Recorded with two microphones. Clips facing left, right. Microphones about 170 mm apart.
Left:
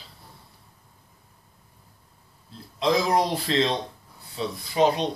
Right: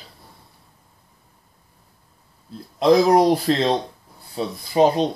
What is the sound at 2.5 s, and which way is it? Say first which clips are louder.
Speech: right 8 dB; 50° right (ahead or behind).